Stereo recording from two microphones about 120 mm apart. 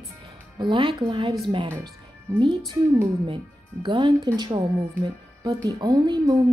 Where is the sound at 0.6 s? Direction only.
40° right (ahead or behind).